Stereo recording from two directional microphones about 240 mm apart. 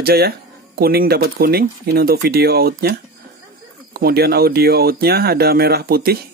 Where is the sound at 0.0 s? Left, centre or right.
Right.